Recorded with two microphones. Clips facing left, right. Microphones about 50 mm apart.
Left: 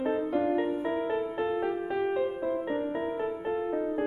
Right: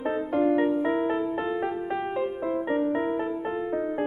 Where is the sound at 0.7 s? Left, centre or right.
Right.